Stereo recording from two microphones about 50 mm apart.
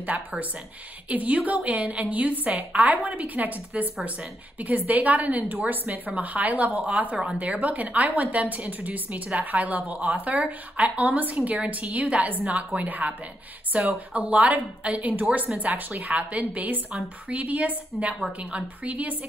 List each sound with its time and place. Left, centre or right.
1.0 s a woman's voice: right